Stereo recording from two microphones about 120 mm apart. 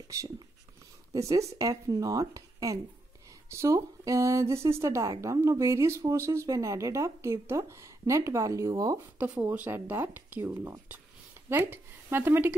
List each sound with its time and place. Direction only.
0.1 s speech: 25° right (ahead or behind)
9.2 s speech: 15° right (ahead or behind)